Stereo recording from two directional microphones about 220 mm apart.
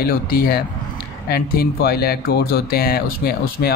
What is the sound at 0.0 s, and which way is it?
Speech, 45° left (ahead or behind).